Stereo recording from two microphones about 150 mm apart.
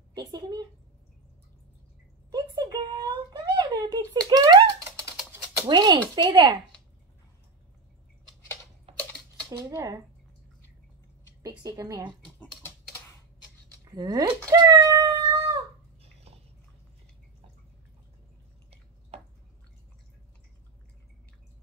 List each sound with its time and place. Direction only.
0.1 s a woman's voice: 30° right (ahead or behind)
2.3 s a sound: 30° right (ahead or behind)
4.3 s typing: 30° right (ahead or behind)
5.7 s speech: 30° right (ahead or behind)
8.9 s typing: 40° right (ahead or behind)
9.5 s speech: 20° right (ahead or behind)
11.4 s speech: 20° right (ahead or behind)
12.4 s typing: 15° left (ahead or behind)
13.8 s speech: 25° right (ahead or behind)
16.0 s bathtub: 45° right (ahead or behind)